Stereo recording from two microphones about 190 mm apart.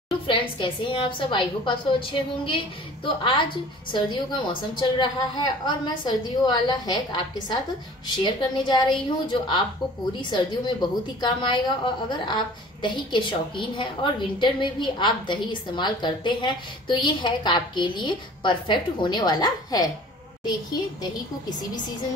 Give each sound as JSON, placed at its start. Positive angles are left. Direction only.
{"t": 0.3, "sound": "a woman's voice", "side_deg": 25}
{"t": 8.2, "sound": "a woman's voice", "side_deg": 20}
{"t": 21.0, "sound": "a woman's voice", "side_deg": 20}